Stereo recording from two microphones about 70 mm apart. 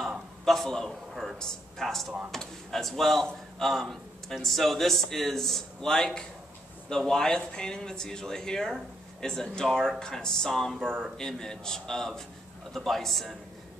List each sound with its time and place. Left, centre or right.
0.5 s speech: centre